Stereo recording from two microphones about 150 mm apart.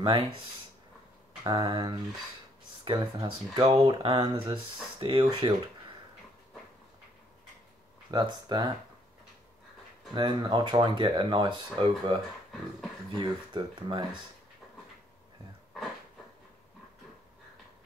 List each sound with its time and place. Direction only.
0.0 s speech: 35° right (ahead or behind)
1.4 s speech: 30° right (ahead or behind)
8.1 s speech: 30° right (ahead or behind)
10.1 s speech: 30° right (ahead or behind)
13.2 s speech: 35° right (ahead or behind)